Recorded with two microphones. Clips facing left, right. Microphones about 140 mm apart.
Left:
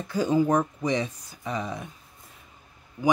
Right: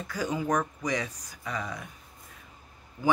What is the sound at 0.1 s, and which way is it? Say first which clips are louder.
Speech: left 6 dB; 30° left (ahead or behind).